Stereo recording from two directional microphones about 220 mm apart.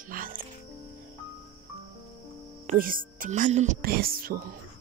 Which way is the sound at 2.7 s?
40° right (ahead or behind).